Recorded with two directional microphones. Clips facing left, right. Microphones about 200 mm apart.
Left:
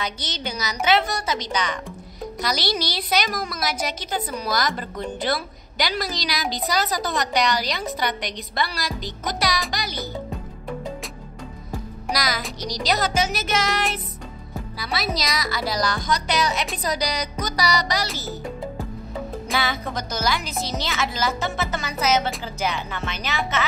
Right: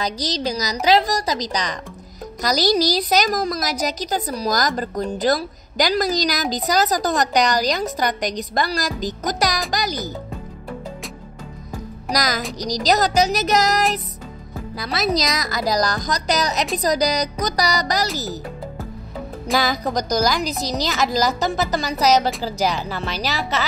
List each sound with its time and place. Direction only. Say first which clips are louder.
0.0 s a woman's voice: right 6 dB; 35° right (ahead or behind)
12.1 s music: right 4 dB; 40° right (ahead or behind)
12.5 s a woman's voice: right 6 dB; 40° right (ahead or behind)
19.5 s a woman's voice: right 6 dB; 35° right (ahead or behind)